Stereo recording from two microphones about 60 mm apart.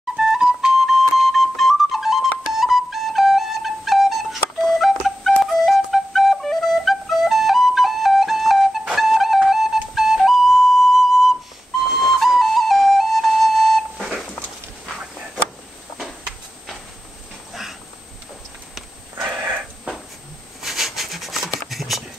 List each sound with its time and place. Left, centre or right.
0.1 s music: centre
2.5 s flute: centre
17.5 s dog: centre
19.4 s wheeze: right
20.6 s a sound: centre